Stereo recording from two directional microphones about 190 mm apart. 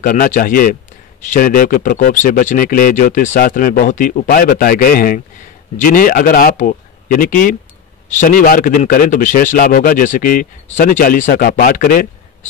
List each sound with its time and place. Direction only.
0.0 s a man's voice: 45° left (ahead or behind)